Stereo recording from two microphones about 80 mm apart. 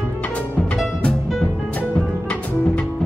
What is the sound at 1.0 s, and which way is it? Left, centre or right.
Music, centre.